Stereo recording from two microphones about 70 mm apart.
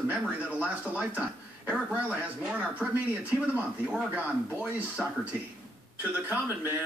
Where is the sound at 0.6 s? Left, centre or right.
Centre.